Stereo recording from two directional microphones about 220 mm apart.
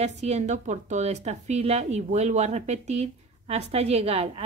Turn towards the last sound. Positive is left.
turn(degrees=-25)  # may be behind; listen again after turning